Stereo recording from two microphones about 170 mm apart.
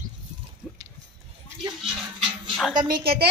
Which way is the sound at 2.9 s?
35° right (ahead or behind).